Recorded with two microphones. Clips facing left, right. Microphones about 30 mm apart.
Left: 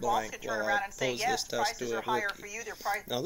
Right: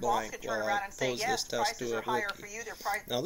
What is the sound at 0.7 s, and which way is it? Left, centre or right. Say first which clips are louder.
Speech: left 1 dB; centre.